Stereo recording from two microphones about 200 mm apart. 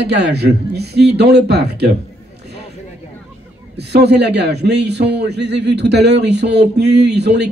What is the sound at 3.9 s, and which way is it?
A man's voice, 55° right (ahead or behind).